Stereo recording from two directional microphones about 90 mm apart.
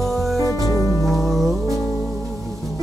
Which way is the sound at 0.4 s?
40° left (ahead or behind).